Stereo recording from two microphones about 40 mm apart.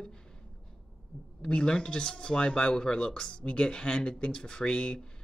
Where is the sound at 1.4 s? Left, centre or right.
Left.